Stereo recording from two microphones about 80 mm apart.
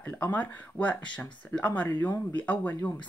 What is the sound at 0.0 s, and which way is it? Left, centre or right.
Speech, centre.